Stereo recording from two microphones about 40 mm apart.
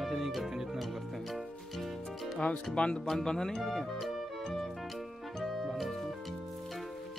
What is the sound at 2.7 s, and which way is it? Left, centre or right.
Speech, left.